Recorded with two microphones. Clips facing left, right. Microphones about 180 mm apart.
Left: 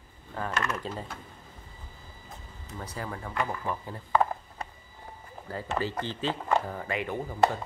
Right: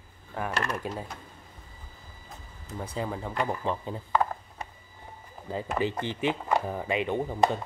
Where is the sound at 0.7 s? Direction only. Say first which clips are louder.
Right 1 dB; 10° right (ahead or behind).